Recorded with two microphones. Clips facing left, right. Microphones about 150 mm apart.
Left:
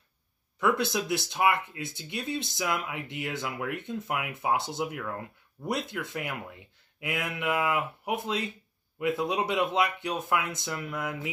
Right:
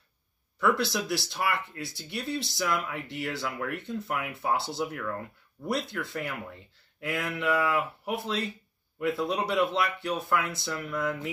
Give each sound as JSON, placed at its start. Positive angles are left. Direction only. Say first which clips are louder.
{"t": 0.6, "sound": "speech", "louder": "even", "side_deg": 20}